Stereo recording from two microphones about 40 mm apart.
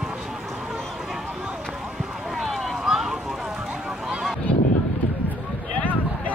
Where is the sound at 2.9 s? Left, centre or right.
Centre.